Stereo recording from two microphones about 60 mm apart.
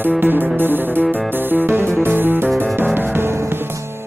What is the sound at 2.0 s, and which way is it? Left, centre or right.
Music, right.